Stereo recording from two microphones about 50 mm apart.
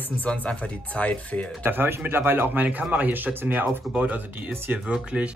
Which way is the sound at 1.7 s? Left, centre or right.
Right.